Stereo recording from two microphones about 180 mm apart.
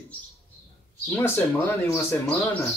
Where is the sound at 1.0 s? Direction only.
15° left (ahead or behind).